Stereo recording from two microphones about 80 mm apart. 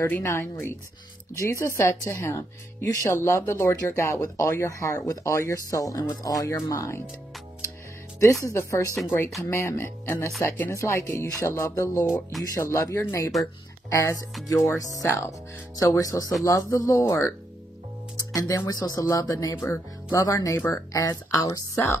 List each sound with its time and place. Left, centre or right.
0.0 s speech: left
8.2 s speech: left
15.0 s speech: left
15.7 s speech: left
17.0 s speech: left
18.1 s music: left
18.7 s speech: left
19.5 s speech: left